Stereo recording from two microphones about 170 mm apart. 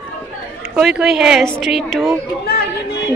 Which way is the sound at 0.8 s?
Centre (ahead or behind).